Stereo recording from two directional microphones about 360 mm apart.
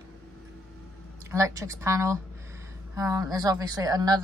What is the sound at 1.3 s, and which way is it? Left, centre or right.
Speech, centre.